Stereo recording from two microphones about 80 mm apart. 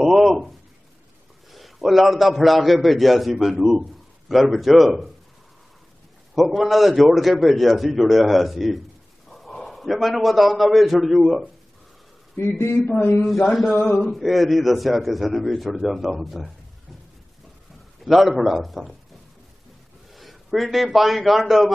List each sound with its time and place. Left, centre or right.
0.0 s a sound: centre
1.5 s a man's voice: centre
6.3 s a man's voice: centre
12.4 s a man's voice: left
13.2 s a man's voice: centre
18.0 s a man's voice: centre
20.1 s a man's voice: centre